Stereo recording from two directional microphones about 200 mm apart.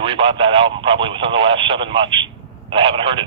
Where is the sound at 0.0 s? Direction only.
25° right (ahead or behind).